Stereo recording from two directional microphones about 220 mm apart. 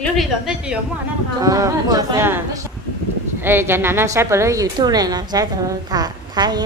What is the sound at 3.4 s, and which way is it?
A woman's voice, 10° right (ahead or behind).